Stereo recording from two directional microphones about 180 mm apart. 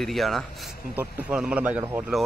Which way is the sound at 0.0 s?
Centre (ahead or behind).